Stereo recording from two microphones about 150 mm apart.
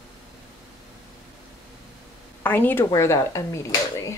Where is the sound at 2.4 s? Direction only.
15° left (ahead or behind).